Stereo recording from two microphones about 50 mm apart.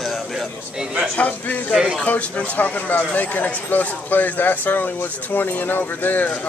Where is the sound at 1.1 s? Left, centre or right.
Left.